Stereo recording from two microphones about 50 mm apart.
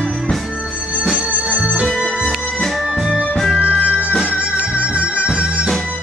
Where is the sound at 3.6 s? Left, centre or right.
Right.